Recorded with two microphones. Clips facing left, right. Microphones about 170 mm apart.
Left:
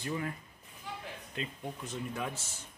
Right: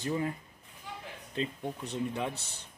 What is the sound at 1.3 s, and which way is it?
Speech, 30° right (ahead or behind).